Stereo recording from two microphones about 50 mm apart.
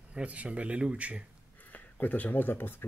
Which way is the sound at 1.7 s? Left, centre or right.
Left.